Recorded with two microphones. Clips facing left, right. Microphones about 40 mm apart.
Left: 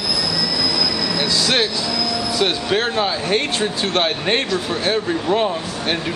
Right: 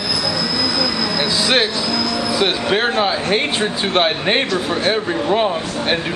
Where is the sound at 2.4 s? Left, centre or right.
Centre.